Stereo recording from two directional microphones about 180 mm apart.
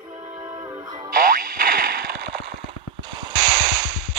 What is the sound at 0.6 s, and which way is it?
Music, 20° right (ahead or behind).